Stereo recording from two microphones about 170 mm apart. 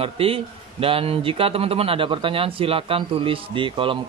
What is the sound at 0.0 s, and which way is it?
A man's voice, 35° right (ahead or behind).